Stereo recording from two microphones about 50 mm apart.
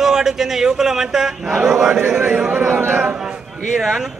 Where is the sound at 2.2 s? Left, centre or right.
Right.